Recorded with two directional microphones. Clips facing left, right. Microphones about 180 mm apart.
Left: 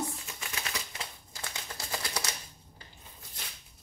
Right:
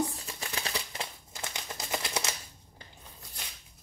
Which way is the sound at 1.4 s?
20° right (ahead or behind).